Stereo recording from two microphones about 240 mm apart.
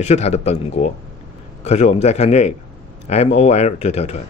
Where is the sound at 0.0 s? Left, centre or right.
Left.